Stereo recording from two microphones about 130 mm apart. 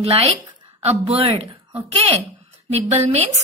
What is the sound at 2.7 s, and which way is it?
Speech, 55° right (ahead or behind).